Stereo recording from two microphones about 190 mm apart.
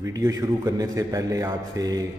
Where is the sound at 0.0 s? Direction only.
20° right (ahead or behind).